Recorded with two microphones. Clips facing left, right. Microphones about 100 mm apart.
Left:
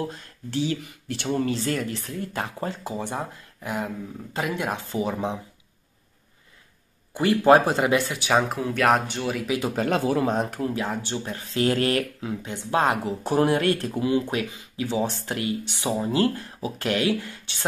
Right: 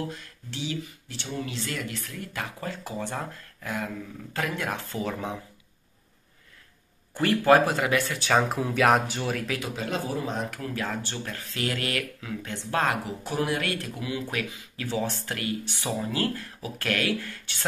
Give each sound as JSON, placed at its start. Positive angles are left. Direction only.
{"t": 0.1, "sound": "speech", "side_deg": 40}
{"t": 1.0, "sound": "speech", "side_deg": 60}
{"t": 1.5, "sound": "speech", "side_deg": 40}
{"t": 7.2, "sound": "speech", "side_deg": 20}
{"t": 8.3, "sound": "speech", "side_deg": 0}
{"t": 9.8, "sound": "speech", "side_deg": 60}
{"t": 10.5, "sound": "speech", "side_deg": 25}
{"t": 13.2, "sound": "speech", "side_deg": 40}